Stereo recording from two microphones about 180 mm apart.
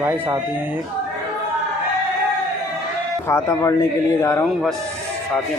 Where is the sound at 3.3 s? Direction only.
15° left (ahead or behind).